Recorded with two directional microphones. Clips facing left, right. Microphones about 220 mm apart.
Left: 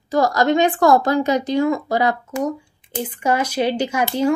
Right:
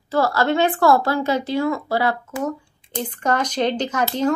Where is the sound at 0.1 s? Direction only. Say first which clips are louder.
Left 2 dB; 15° left (ahead or behind).